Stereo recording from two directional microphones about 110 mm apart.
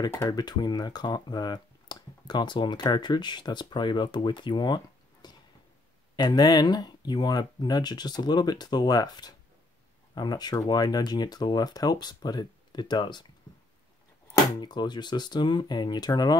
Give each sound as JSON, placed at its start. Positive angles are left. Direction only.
{"t": 0.3, "sound": "speech", "side_deg": 40}
{"t": 14.6, "sound": "speech", "side_deg": 40}